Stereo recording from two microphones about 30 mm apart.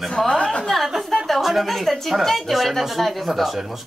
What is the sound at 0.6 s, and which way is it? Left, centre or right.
Speech, centre.